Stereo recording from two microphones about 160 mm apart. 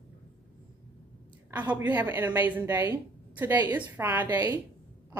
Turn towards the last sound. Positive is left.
turn(degrees=-10)  # may be behind; listen again after turning